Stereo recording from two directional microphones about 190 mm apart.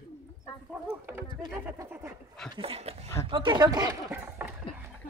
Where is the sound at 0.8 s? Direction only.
10° right (ahead or behind).